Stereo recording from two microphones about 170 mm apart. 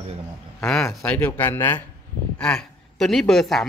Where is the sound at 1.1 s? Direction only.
15° left (ahead or behind).